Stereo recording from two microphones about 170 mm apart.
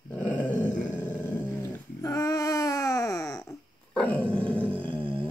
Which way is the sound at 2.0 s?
20° left (ahead or behind).